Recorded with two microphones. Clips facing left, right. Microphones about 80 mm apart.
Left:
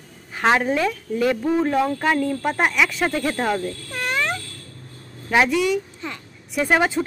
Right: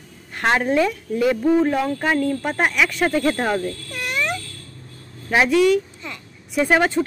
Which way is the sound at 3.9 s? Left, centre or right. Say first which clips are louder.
Left 2 dB; left.